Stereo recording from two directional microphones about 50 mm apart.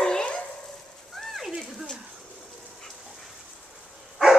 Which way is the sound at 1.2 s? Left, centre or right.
Centre.